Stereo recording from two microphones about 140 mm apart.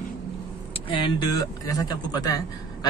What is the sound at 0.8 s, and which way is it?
A man's voice, 35° left (ahead or behind).